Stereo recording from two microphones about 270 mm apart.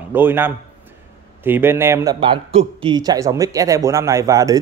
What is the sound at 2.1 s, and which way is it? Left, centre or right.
Speech, centre.